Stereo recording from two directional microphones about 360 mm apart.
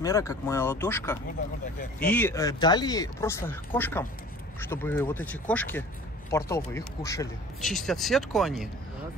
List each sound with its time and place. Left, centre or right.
0.0 s speech: centre